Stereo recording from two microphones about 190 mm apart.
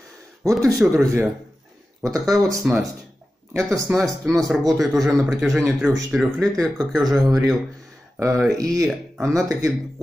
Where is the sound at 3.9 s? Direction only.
10° right (ahead or behind).